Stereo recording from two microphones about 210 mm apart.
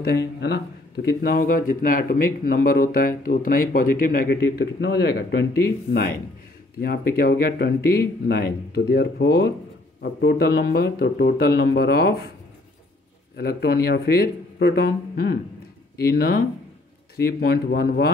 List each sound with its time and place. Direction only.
0.0 s a man's voice: 50° left (ahead or behind)
13.4 s a man's voice: 50° left (ahead or behind)